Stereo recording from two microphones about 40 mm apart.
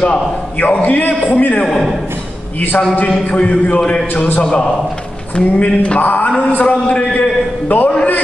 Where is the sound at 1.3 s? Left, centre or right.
Left.